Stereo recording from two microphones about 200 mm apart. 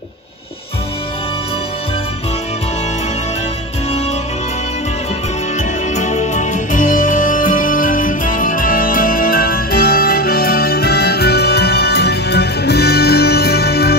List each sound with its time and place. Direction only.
5.6 s music: 35° left (ahead or behind); by 13.9 s 50° left (ahead or behind)